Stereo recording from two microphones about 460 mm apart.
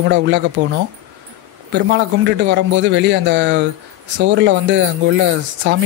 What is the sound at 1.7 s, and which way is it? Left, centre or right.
Speech, right.